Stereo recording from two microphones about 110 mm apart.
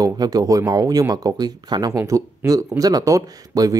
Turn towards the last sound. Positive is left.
turn(degrees=-35)  # may be behind; listen again after turning